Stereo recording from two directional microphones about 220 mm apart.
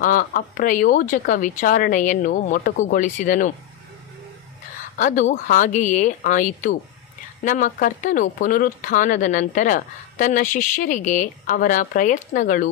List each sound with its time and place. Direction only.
0.0 s speech: 40° left (ahead or behind)
4.9 s speech: 35° left (ahead or behind)